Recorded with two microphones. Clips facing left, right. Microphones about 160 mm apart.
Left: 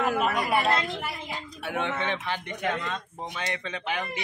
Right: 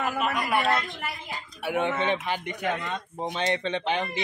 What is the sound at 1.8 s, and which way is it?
Speech, 15° right (ahead or behind).